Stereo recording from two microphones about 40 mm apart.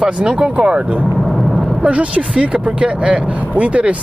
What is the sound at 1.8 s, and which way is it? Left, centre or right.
Speech, right.